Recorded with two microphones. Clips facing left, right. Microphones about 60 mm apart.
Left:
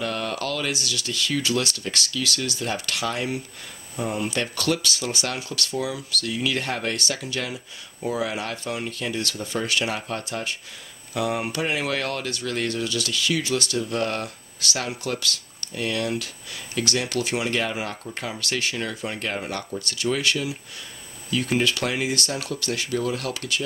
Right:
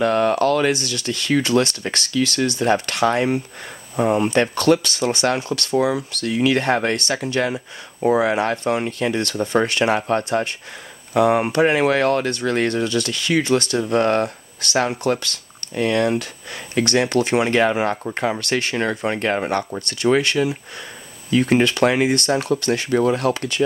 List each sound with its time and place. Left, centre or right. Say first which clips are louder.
0.0 s speech: right 11 dB; right